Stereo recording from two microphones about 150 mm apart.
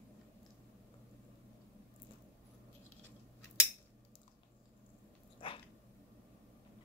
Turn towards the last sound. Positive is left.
turn(degrees=35)  # may be behind; listen again after turning